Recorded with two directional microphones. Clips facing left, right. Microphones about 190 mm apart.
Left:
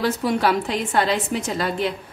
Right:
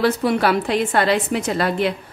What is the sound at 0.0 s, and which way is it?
A woman's voice, 65° right (ahead or behind).